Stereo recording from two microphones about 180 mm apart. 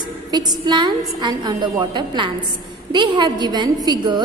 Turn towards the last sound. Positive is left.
turn(degrees=-25)  # may be behind; listen again after turning